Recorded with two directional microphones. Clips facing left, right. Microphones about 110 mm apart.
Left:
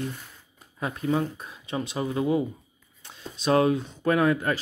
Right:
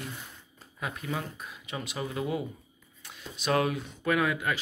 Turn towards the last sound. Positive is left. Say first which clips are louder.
# left 5 dB
turn(degrees=35)  # may be behind; listen again after turning